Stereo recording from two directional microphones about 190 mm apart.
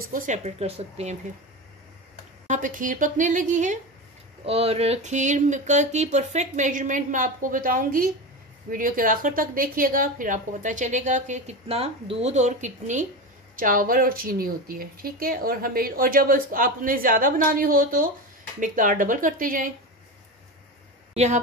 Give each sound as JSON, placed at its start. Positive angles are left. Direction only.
{"t": 0.0, "sound": "a woman's voice", "side_deg": -45}
{"t": 0.6, "sound": "a woman's voice", "side_deg": -30}
{"t": 2.4, "sound": "a woman's voice", "side_deg": -40}
{"t": 21.1, "sound": "speech", "side_deg": -35}